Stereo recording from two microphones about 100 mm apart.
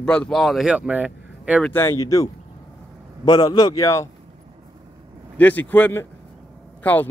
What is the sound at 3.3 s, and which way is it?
Speech, 45° left (ahead or behind).